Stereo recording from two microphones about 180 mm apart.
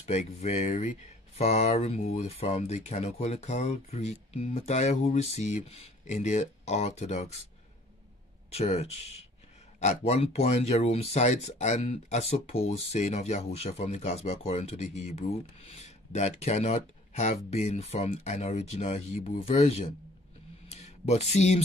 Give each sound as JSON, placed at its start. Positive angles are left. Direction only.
{"t": 0.0, "sound": "speech", "side_deg": 35}
{"t": 8.5, "sound": "speech", "side_deg": 35}
{"t": 20.6, "sound": "a sound", "side_deg": 35}